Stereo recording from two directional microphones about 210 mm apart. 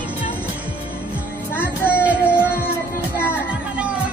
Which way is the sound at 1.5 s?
10° left (ahead or behind).